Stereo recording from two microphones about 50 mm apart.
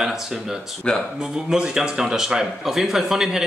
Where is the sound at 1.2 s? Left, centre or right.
Centre.